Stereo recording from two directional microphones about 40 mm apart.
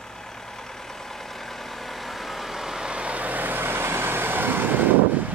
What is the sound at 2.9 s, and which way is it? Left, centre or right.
Vehicle, right.